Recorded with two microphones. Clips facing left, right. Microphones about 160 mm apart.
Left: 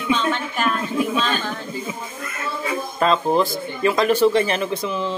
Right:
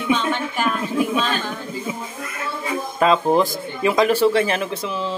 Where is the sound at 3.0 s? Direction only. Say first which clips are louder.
Right 2 dB; 10° right (ahead or behind).